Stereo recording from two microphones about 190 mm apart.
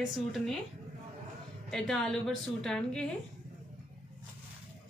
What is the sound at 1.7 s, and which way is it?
Speech, 5° left (ahead or behind).